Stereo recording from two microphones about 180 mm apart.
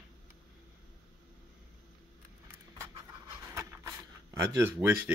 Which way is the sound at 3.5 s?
15° right (ahead or behind).